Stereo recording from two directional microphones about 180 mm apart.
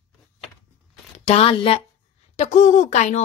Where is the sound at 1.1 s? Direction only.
35° left (ahead or behind).